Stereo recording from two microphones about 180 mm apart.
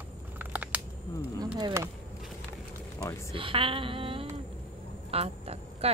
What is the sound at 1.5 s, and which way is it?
Speech, 15° right (ahead or behind).